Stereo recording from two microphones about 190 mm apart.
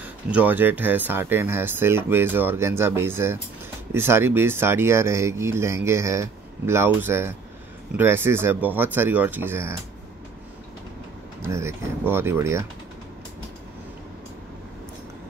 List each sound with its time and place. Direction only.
0.0 s speech: 10° right (ahead or behind)
11.4 s speech: 15° right (ahead or behind)